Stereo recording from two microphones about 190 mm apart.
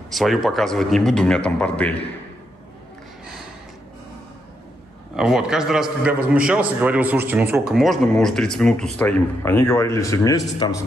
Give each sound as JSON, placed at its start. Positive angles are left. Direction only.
{"t": 0.1, "sound": "a man's voice", "side_deg": 0}
{"t": 5.1, "sound": "a man's voice", "side_deg": -5}